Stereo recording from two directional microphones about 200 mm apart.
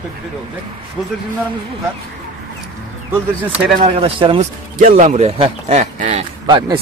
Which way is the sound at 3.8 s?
25° right (ahead or behind).